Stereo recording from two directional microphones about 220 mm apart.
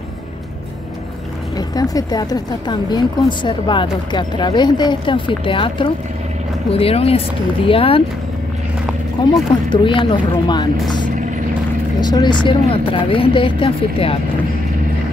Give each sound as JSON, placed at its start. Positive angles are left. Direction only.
{"t": 1.6, "sound": "a woman's voice", "side_deg": 15}
{"t": 9.2, "sound": "a woman's voice", "side_deg": 20}